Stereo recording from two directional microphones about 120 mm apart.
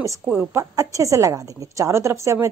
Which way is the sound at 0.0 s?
25° right (ahead or behind).